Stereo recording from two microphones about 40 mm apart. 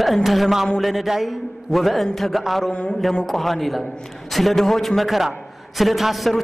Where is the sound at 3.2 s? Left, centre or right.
Centre.